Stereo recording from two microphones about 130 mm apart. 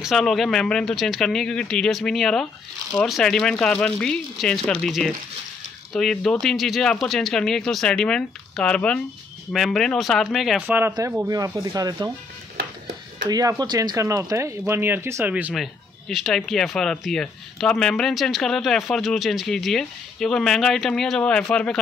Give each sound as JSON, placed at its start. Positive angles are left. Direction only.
{"t": 0.0, "sound": "speech", "side_deg": 0}
{"t": 10.7, "sound": "speech", "side_deg": -15}
{"t": 11.2, "sound": "speech", "side_deg": -25}
{"t": 13.3, "sound": "speech", "side_deg": -25}
{"t": 15.5, "sound": "speech", "side_deg": 0}